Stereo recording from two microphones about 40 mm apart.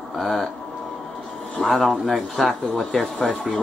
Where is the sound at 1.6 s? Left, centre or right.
Centre.